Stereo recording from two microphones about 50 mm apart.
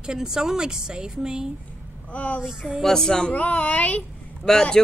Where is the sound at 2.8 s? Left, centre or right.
Centre.